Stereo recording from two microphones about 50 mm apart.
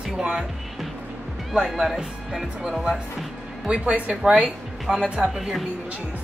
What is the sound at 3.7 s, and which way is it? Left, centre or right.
Speech, right.